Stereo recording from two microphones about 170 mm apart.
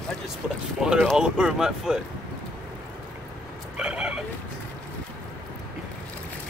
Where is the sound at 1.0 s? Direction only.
5° right (ahead or behind).